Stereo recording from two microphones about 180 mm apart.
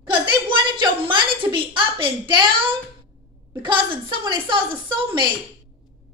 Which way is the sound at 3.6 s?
30° right (ahead or behind).